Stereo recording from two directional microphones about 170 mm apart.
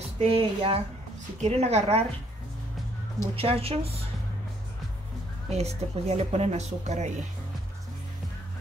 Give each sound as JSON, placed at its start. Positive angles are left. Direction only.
{"t": 0.2, "sound": "speech", "side_deg": -30}
{"t": 3.3, "sound": "speech", "side_deg": -35}
{"t": 5.5, "sound": "speech", "side_deg": -40}